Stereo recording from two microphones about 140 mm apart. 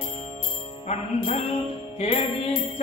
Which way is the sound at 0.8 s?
55° left (ahead or behind).